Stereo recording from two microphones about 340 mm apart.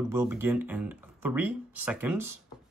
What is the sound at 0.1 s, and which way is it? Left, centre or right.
Speech, centre.